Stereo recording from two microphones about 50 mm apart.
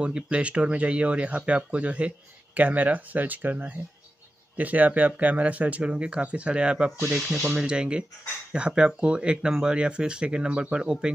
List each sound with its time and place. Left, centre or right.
0.0 s speech: right